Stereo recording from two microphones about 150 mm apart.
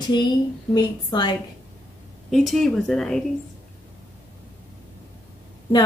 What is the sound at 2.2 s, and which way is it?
Speech, centre (ahead or behind).